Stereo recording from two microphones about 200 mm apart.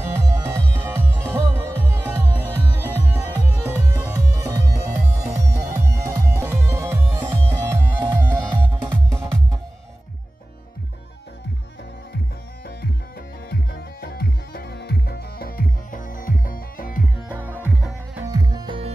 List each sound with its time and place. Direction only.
0.0 s music: 15° right (ahead or behind)
13.5 s music: 50° left (ahead or behind)
17.3 s music: 10° right (ahead or behind)
18.3 s music: 20° right (ahead or behind)